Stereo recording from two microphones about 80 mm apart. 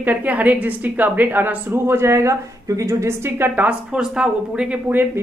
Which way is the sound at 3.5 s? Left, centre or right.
Centre.